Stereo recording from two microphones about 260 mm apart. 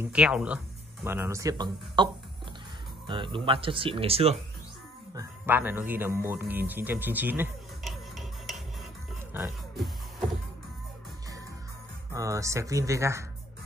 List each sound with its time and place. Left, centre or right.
0.0 s speech: centre
3.1 s speech: centre
5.1 s speech: centre
9.3 s music: centre
12.1 s speech: centre